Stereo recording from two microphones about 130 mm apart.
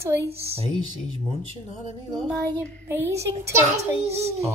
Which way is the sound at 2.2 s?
5° left (ahead or behind).